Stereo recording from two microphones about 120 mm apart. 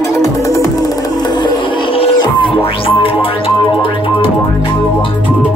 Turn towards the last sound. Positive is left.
turn(degrees=50)  # may be behind; listen again after turning